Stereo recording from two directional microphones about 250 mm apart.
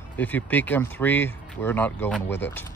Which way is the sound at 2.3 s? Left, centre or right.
Left.